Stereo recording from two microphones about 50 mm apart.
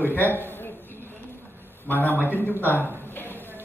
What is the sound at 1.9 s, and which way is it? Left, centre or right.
Speech, left.